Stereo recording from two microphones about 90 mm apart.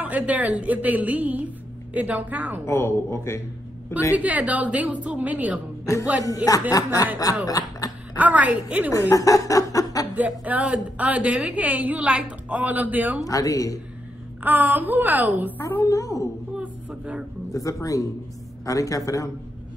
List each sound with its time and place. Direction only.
0.0 s a woman's voice: 15° right (ahead or behind)
2.6 s a woman's voice: 30° left (ahead or behind)
4.1 s a woman's voice: 15° right (ahead or behind)
6.2 s speech: 40° left (ahead or behind)
7.4 s a sound: 40° left (ahead or behind)
8.2 s a woman's voice: 15° right (ahead or behind)
8.9 s speech: 40° left (ahead or behind)
10.4 s a woman's voice: 15° right (ahead or behind)
13.2 s speech: 40° left (ahead or behind)
14.4 s a woman's voice: 20° right (ahead or behind)
15.8 s speech: 40° left (ahead or behind)
16.5 s a sound: 15° right (ahead or behind)
17.5 s speech: 40° left (ahead or behind)